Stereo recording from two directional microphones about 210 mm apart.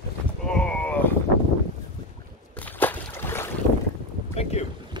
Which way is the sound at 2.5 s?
10° left (ahead or behind).